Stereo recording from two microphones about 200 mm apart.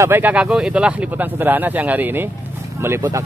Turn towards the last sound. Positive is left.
turn(degrees=-15)  # may be behind; listen again after turning